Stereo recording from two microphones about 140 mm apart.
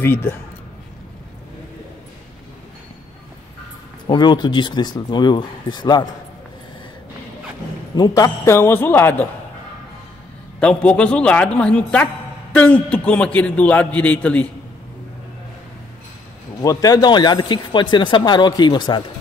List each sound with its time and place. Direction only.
0.0 s a man's voice: 15° left (ahead or behind)
4.1 s speech: 30° left (ahead or behind)
7.9 s a man's voice: 25° left (ahead or behind)
10.6 s a man's voice: 10° left (ahead or behind)
16.6 s speech: 25° left (ahead or behind)